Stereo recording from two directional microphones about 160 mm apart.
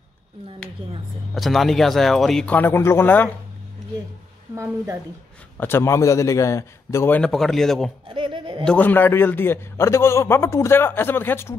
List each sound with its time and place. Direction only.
1.3 s speech: centre (ahead or behind)
5.6 s a man's voice: 15° left (ahead or behind)
8.1 s a sound: 30° right (ahead or behind)
8.6 s a man's voice: 10° left (ahead or behind)